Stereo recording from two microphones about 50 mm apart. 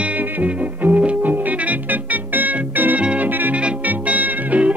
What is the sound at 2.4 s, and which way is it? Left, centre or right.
Organ, right.